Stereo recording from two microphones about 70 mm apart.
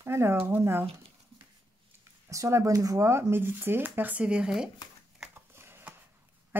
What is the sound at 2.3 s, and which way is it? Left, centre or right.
Speech, right.